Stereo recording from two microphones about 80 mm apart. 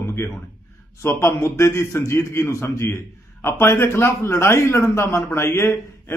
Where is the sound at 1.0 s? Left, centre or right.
Left.